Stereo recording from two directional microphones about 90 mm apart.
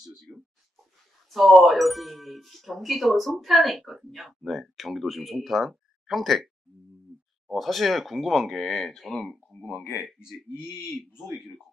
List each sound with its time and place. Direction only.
1.3 s speech: centre (ahead or behind)
9.7 s speech: 15° left (ahead or behind)
10.6 s speech: 5° right (ahead or behind)